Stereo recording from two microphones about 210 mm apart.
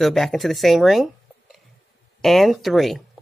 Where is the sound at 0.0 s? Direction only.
Centre (ahead or behind).